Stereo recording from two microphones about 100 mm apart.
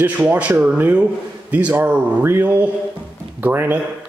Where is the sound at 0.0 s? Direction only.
15° right (ahead or behind).